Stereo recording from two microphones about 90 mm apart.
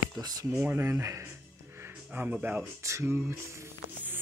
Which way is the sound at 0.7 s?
25° right (ahead or behind).